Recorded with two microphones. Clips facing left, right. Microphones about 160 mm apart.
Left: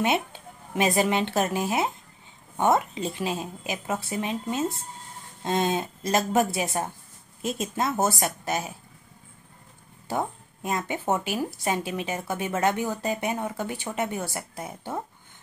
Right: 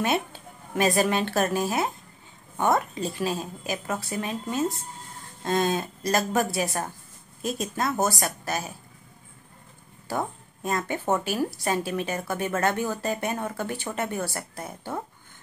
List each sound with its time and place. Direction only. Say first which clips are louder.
0.0 s speech: left 1 dB; 20° left (ahead or behind)
10.0 s speech: left 1 dB; 15° left (ahead or behind)